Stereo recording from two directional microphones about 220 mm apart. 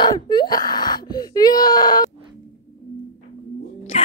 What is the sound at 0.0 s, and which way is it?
Wail, 20° left (ahead or behind).